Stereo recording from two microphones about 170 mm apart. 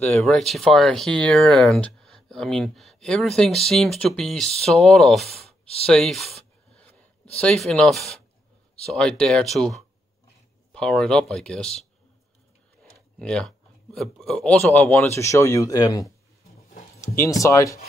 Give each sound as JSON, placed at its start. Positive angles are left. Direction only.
{"t": 0.0, "sound": "speech", "side_deg": 5}
{"t": 5.9, "sound": "a sound", "side_deg": 0}
{"t": 7.3, "sound": "speech", "side_deg": 5}
{"t": 13.2, "sound": "speech", "side_deg": 5}
{"t": 17.2, "sound": "speech", "side_deg": 20}